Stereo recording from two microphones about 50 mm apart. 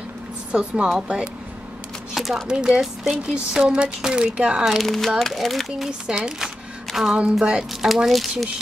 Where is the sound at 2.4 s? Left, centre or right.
Centre.